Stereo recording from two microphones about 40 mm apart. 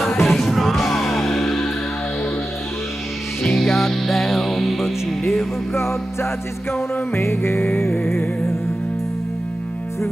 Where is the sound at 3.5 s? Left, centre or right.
Centre.